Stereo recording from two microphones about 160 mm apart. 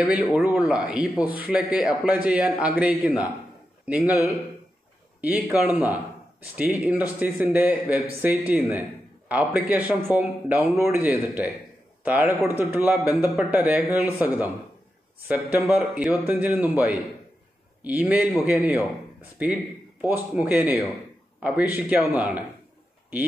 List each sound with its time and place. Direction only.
0.0 s a man's voice: centre (ahead or behind)
15.2 s a man's voice: 10° right (ahead or behind)